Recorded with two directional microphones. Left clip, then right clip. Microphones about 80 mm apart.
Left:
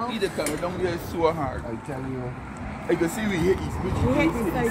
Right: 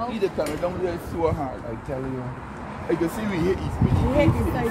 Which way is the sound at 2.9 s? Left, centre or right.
Centre.